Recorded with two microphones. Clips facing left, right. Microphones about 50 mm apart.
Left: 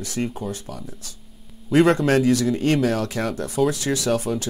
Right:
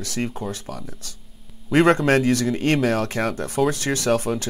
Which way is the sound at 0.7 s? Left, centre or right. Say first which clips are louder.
Right 2 dB; right.